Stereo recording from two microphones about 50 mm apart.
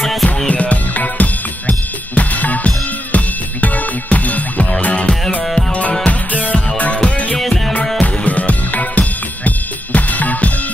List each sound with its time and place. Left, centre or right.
0.0 s music: centre
0.5 s music: left
5.4 s music: centre
5.7 s music: left
7.3 s music: centre
8.0 s music: left